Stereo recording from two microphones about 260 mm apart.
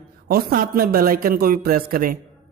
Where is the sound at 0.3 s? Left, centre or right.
Right.